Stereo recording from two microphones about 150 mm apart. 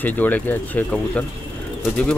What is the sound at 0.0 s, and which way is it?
Speech, 10° left (ahead or behind).